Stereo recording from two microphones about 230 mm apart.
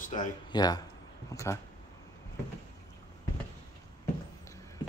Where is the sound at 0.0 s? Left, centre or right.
Left.